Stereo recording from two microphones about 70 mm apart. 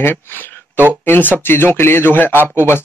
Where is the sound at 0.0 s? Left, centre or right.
Left.